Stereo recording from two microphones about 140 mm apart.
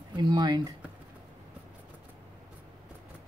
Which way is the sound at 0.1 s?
30° right (ahead or behind).